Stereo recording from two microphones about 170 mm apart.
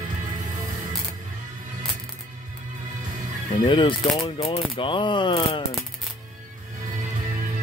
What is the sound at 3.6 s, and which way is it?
Speech, 30° left (ahead or behind).